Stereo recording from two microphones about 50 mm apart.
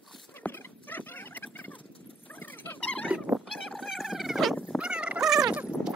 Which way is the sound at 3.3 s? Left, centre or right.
Right.